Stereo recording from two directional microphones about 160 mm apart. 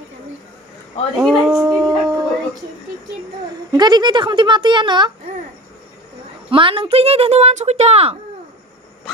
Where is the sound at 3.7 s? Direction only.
25° right (ahead or behind).